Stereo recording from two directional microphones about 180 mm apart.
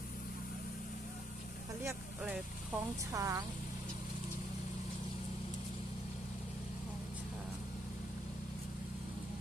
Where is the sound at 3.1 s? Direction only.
15° right (ahead or behind).